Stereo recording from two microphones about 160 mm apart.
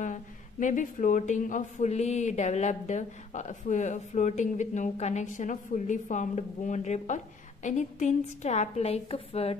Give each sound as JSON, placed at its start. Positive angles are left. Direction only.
{"t": 0.0, "sound": "speech", "side_deg": 50}